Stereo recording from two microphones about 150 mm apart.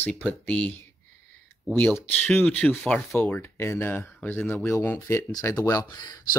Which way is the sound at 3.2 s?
15° left (ahead or behind).